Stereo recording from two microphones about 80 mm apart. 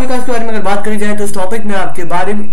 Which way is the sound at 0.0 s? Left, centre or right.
Centre.